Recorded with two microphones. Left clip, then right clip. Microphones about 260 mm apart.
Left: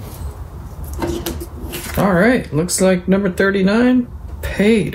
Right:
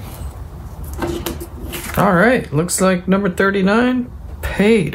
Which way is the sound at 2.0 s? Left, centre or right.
Right.